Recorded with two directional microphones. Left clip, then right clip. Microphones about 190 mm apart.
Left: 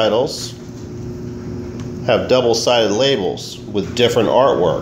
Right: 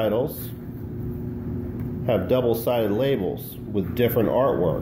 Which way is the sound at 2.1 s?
5° left (ahead or behind).